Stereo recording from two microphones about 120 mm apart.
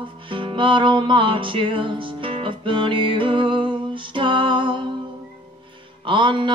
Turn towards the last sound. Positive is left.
turn(degrees=-45)  # may be behind; listen again after turning